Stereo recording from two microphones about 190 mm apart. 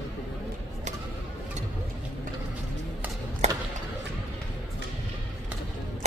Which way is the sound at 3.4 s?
35° right (ahead or behind).